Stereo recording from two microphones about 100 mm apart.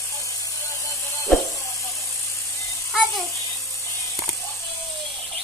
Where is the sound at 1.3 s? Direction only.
Centre (ahead or behind).